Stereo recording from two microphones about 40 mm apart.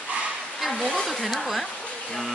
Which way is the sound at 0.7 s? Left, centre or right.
Centre.